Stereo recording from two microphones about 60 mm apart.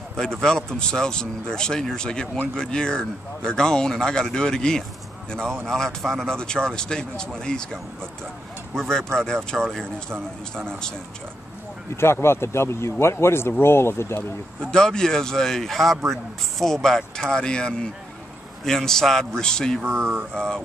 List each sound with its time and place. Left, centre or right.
0.1 s speech: centre
11.9 s a man's voice: left
14.6 s speech: centre
19.8 s speech: right
20.3 s speech: centre